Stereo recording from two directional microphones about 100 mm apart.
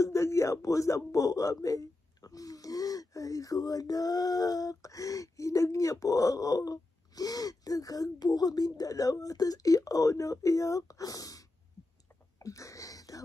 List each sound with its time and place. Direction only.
0.0 s speech: 30° left (ahead or behind)